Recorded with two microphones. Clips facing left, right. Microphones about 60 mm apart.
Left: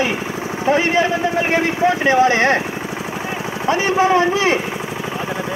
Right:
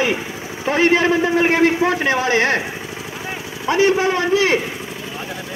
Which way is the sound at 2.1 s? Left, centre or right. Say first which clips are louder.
Left 3 dB; centre.